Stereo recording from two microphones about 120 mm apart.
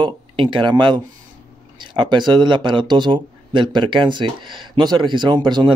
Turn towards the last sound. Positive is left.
turn(degrees=-40)  # may be behind; listen again after turning